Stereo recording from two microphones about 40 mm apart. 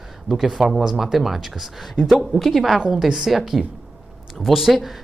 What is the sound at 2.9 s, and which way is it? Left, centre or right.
Speech, centre.